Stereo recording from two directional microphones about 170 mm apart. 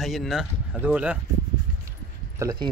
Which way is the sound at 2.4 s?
25° right (ahead or behind).